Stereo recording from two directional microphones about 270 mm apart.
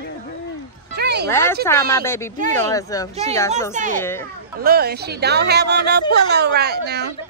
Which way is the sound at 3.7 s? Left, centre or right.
Right.